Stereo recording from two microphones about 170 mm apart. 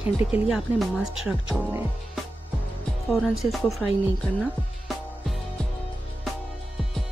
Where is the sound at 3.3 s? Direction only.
Centre (ahead or behind).